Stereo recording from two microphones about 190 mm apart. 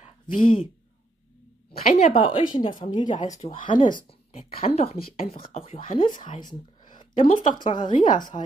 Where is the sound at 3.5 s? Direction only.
25° left (ahead or behind).